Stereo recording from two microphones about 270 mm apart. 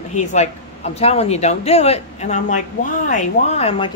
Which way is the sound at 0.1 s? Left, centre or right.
Left.